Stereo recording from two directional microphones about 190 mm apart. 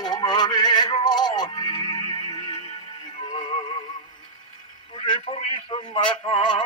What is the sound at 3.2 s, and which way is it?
Music, 25° left (ahead or behind).